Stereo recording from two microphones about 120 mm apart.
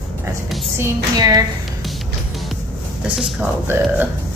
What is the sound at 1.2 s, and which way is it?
Speech, 35° right (ahead or behind).